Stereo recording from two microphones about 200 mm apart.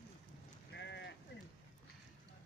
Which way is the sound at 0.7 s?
60° left (ahead or behind).